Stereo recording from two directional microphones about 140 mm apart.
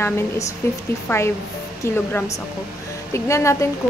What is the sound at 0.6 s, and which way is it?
Speech, 20° left (ahead or behind).